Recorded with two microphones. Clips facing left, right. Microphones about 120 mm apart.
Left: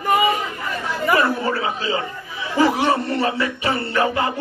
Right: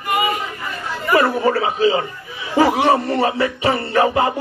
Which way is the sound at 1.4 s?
30° right (ahead or behind).